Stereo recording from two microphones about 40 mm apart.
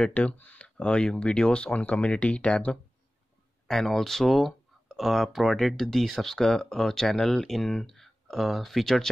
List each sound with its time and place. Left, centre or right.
0.0 s speech: left
3.6 s speech: centre